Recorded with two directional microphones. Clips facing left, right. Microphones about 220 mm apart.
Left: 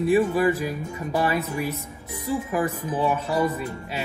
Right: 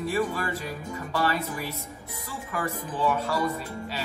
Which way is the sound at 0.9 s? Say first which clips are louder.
Left 3 dB; 15° left (ahead or behind).